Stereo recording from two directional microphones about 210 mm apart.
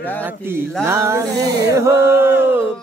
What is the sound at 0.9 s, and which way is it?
Music, 15° right (ahead or behind).